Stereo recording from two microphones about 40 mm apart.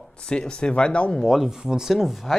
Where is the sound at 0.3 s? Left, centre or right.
Left.